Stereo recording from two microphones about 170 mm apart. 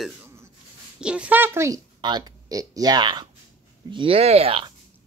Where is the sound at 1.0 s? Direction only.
5° right (ahead or behind); by 4.7 s 30° right (ahead or behind).